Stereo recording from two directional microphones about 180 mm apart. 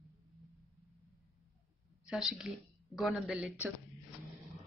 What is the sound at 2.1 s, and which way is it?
Speech, centre (ahead or behind).